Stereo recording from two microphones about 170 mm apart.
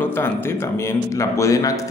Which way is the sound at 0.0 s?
15° left (ahead or behind).